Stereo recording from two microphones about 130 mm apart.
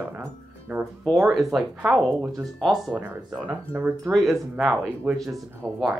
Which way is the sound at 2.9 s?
15° right (ahead or behind).